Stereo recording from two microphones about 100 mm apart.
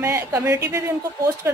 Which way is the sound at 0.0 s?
25° right (ahead or behind).